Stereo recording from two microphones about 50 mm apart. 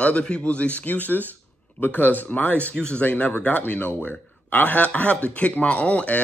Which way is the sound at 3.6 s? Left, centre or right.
Left.